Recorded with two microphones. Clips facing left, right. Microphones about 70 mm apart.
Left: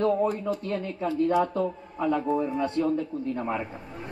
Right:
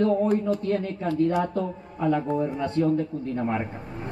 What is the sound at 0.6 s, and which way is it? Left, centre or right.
A woman's voice, right.